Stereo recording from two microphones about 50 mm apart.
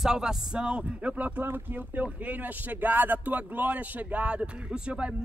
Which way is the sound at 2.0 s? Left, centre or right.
Right.